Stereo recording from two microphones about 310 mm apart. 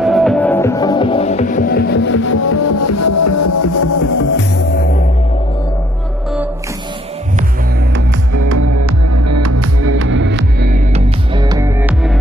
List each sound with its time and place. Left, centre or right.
0.0 s music: centre; by 4.2 s left
4.2 s music: left
8.4 s music: right
11.3 s music: centre